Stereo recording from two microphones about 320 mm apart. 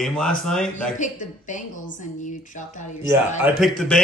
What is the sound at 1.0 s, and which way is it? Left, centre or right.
A woman's voice, left.